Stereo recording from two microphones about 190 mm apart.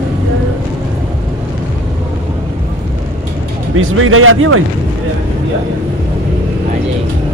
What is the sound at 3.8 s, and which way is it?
Speech, 90° right.